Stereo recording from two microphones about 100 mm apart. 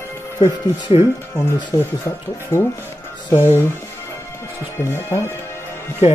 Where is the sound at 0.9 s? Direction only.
60° left (ahead or behind).